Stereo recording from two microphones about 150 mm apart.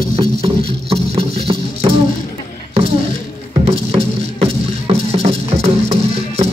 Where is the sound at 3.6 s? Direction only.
45° right (ahead or behind).